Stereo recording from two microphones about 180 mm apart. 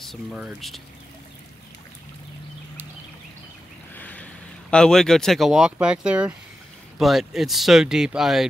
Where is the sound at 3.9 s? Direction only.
10° left (ahead or behind).